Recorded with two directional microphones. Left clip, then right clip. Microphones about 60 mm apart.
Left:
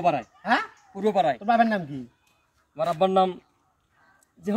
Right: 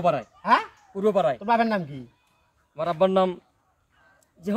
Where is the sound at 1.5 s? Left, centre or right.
Right.